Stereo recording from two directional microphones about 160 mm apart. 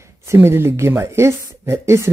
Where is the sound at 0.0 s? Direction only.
15° right (ahead or behind).